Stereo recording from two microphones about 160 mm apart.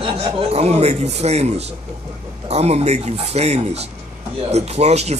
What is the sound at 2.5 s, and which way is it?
Speech, 40° right (ahead or behind).